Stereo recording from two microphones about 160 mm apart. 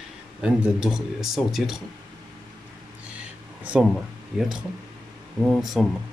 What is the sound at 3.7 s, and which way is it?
Speech, 5° right (ahead or behind).